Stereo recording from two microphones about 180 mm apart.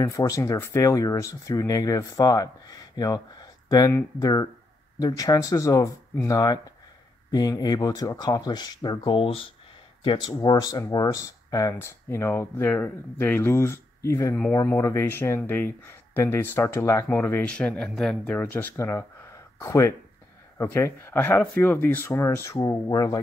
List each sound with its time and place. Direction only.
0.0 s speech: 20° left (ahead or behind)